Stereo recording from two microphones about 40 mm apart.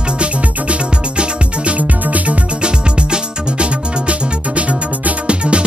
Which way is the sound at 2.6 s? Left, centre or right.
Right.